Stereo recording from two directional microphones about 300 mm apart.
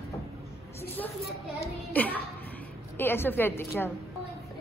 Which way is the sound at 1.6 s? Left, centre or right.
Centre.